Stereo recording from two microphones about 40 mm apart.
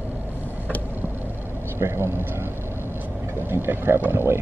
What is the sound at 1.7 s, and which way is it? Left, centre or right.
Speech, right.